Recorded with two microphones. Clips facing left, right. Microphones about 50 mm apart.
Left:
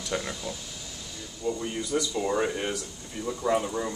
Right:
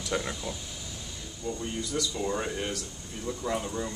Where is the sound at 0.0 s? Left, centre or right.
Centre.